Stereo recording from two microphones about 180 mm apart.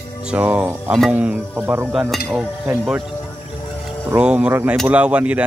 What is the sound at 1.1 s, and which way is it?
Speech, 10° right (ahead or behind).